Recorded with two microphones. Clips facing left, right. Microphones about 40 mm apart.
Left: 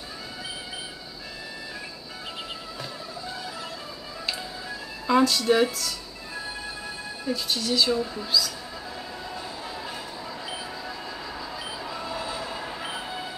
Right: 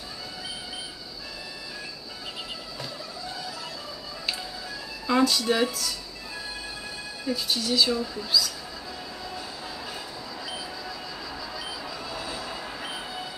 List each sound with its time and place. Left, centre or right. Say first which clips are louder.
5.0 s speech: left 2 dB; centre
7.2 s speech: even; centre
7.9 s speech: left 1 dB; centre
10.9 s a sound: left 1 dB; centre
12.4 s train: left 2 dB; centre